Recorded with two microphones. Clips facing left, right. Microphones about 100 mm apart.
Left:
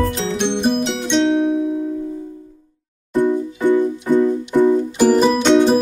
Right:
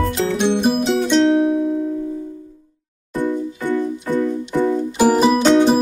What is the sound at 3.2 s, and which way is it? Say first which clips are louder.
Music: left 4 dB; 15° left (ahead or behind).